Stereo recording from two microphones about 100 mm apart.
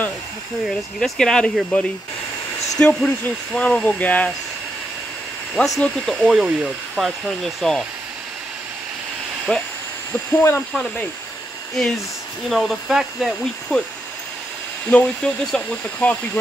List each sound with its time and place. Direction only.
0.7 s speech: 5° left (ahead or behind)
5.8 s speech: 5° left (ahead or behind)
9.5 s speech: 10° left (ahead or behind)
10.7 s speech: 5° left (ahead or behind)
14.9 s speech: 10° left (ahead or behind)